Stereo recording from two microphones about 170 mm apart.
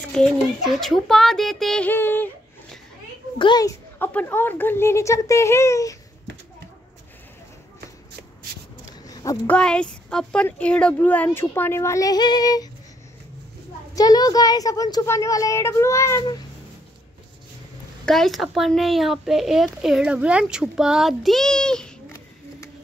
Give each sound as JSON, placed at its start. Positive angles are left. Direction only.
{"t": 0.1, "sound": "a sound", "side_deg": 0}
{"t": 3.3, "sound": "speech", "side_deg": 25}
{"t": 4.0, "sound": "speech", "side_deg": 10}
{"t": 9.0, "sound": "a sound", "side_deg": 20}
{"t": 9.5, "sound": "speech", "side_deg": 5}
{"t": 13.9, "sound": "speech", "side_deg": 20}
{"t": 18.0, "sound": "speech", "side_deg": 0}